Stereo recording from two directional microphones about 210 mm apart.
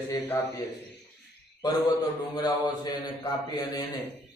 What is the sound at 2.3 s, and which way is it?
Speech, 20° left (ahead or behind).